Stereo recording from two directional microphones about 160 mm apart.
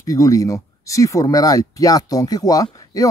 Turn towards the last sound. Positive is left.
turn(degrees=20)  # may be behind; listen again after turning